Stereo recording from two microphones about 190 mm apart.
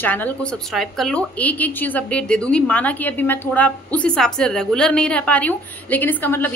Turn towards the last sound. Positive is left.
turn(degrees=10)  # may be behind; listen again after turning